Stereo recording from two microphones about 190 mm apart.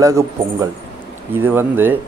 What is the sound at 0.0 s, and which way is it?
Speech, 15° right (ahead or behind).